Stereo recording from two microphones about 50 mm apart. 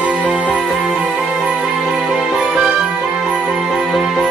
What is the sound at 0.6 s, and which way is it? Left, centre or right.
Music, centre.